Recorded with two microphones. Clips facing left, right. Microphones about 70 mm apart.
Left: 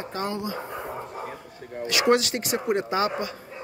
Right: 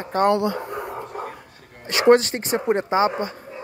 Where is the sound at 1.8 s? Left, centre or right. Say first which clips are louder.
Right 6 dB; right.